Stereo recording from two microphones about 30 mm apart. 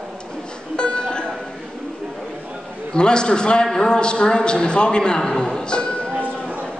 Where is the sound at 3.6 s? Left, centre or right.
Centre.